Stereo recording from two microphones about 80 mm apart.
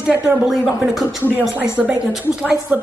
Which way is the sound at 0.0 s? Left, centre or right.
Right.